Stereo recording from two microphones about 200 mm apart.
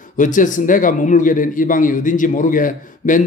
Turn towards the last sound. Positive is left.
turn(degrees=40)  # may be behind; listen again after turning